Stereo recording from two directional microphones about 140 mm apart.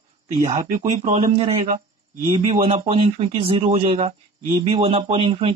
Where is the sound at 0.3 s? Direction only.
60° right (ahead or behind).